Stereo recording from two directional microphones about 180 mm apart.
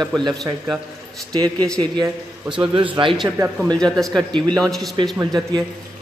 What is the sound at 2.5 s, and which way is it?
Speech, 25° right (ahead or behind).